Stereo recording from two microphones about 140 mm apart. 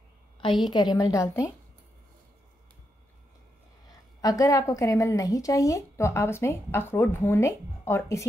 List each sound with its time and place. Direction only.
0.6 s a woman's voice: 35° left (ahead or behind)
4.2 s a woman's voice: 25° left (ahead or behind)